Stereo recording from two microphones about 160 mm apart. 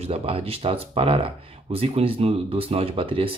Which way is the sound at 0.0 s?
35° right (ahead or behind).